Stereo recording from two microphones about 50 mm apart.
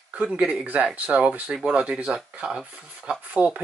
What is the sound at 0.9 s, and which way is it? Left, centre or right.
Speech, right.